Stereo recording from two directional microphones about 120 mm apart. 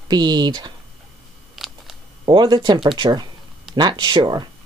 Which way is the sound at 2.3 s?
40° right (ahead or behind).